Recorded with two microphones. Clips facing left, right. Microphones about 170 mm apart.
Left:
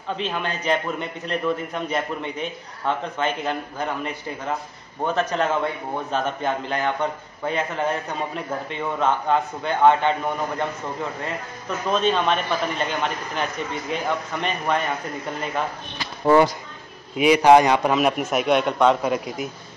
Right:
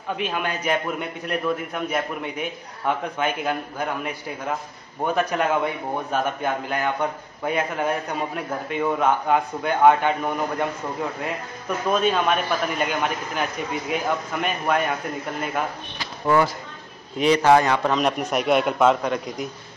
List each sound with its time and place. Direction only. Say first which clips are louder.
0.2 s a man's voice: right 2 dB; 10° right (ahead or behind)
11.9 s a man's voice: even; 10° right (ahead or behind)
16.3 s a man's voice: left 4 dB; 20° left (ahead or behind); by 19.5 s 5° left (ahead or behind)